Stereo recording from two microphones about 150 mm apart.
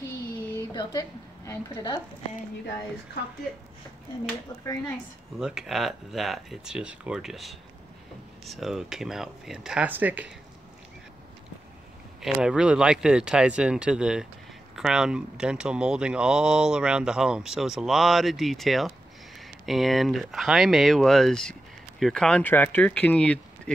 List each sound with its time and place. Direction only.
0.6 s a woman's voice: 25° left (ahead or behind)
5.4 s speech: 5° right (ahead or behind)
12.2 s speech: 5° right (ahead or behind)